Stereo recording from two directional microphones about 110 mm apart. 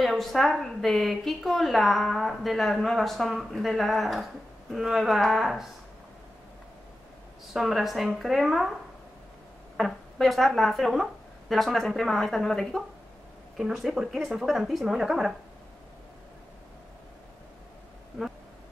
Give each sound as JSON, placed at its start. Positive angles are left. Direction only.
{"t": 0.0, "sound": "a woman's voice", "side_deg": 0}
{"t": 7.5, "sound": "a woman's voice", "side_deg": 0}
{"t": 9.8, "sound": "a woman's voice", "side_deg": 0}